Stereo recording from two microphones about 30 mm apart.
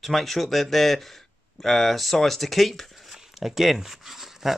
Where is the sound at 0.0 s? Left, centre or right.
Centre.